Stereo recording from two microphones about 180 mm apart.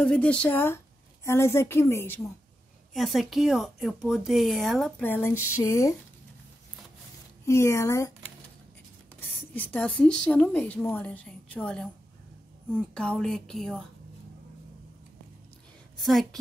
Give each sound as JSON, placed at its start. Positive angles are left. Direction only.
{"t": 0.0, "sound": "a woman's voice", "side_deg": 5}
{"t": 2.9, "sound": "a woman's voice", "side_deg": 0}
{"t": 7.4, "sound": "a woman's voice", "side_deg": 15}
{"t": 9.6, "sound": "a woman's voice", "side_deg": 10}
{"t": 16.0, "sound": "speech", "side_deg": 0}